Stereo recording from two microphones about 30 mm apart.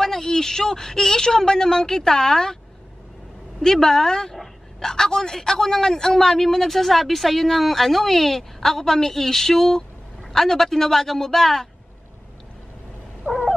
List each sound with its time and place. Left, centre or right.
0.0 s a man's voice: centre
3.6 s a man's voice: centre
13.2 s owl: right